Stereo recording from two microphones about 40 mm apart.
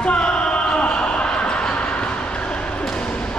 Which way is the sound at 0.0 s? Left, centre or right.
Left.